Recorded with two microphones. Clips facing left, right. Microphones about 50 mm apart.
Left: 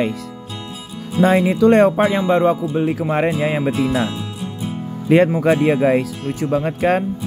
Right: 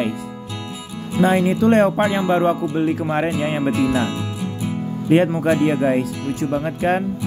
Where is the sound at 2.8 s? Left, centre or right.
Centre.